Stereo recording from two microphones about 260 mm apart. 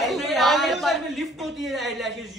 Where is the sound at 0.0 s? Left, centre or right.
Centre.